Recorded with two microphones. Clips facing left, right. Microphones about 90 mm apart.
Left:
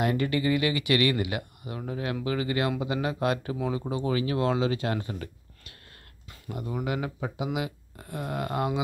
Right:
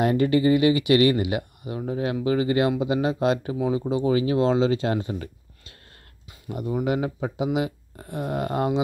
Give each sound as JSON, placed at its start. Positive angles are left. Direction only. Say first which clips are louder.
{"t": 0.0, "sound": "speech", "louder": "right 6 dB", "side_deg": -30}
{"t": 6.7, "sound": "speech", "louder": "right 7 dB", "side_deg": -30}